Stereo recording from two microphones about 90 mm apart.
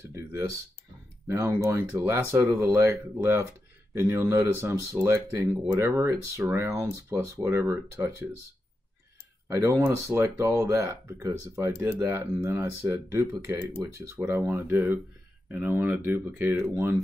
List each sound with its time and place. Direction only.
0.1 s speech: 35° right (ahead or behind)
9.5 s speech: 30° right (ahead or behind)